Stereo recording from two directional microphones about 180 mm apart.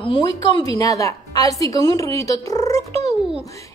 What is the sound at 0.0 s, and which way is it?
A woman's voice, 25° left (ahead or behind).